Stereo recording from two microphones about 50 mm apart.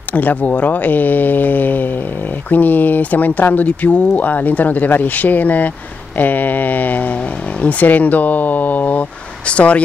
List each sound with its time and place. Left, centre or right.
0.1 s speech: left